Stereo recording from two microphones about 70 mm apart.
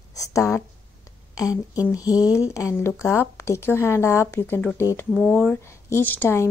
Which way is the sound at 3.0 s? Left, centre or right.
Left.